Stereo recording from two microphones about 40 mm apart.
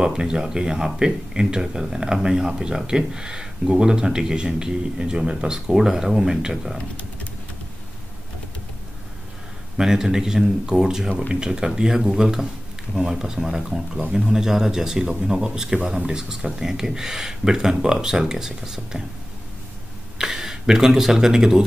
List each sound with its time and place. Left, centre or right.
0.0 s speech: centre
9.8 s speech: centre
20.2 s speech: centre